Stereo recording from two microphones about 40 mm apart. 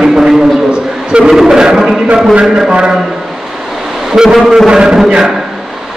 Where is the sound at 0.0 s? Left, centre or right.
Centre.